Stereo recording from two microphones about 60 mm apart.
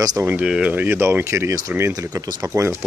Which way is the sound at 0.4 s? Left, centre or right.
Centre.